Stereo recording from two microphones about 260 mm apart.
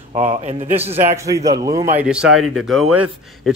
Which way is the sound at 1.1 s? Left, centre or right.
Centre.